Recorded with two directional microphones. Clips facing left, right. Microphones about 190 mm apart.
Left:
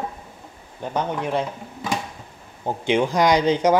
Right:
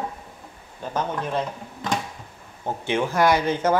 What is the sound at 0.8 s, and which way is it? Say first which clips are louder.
Speech: left 2 dB; 15° left (ahead or behind).